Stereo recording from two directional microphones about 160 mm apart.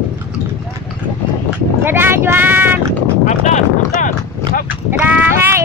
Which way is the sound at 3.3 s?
50° left (ahead or behind).